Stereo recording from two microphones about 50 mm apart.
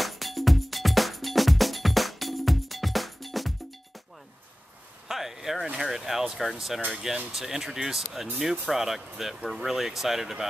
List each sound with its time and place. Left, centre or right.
0.0 s music: centre
5.0 s a sound: centre
5.8 s speech: centre